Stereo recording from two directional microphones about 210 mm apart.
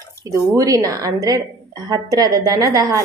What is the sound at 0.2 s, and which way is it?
A woman's voice, 15° right (ahead or behind).